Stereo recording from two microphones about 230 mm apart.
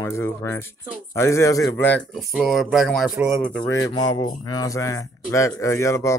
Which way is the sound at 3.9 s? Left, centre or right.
Centre.